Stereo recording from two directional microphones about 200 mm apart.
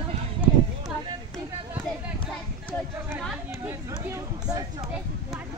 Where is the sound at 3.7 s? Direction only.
15° right (ahead or behind).